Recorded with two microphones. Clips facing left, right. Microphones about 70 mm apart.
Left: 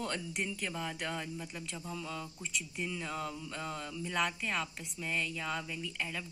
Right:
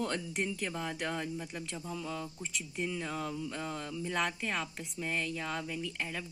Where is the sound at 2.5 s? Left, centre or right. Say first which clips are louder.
Right 2 dB; right.